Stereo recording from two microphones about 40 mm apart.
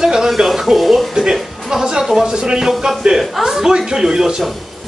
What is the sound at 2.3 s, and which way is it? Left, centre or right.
Speech, right.